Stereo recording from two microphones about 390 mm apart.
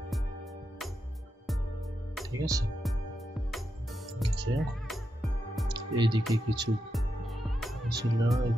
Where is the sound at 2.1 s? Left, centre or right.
Centre.